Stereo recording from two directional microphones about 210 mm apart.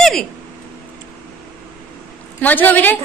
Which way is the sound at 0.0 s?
Centre (ahead or behind).